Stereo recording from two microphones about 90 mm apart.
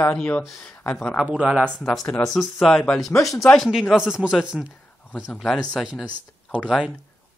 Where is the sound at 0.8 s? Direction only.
15° left (ahead or behind).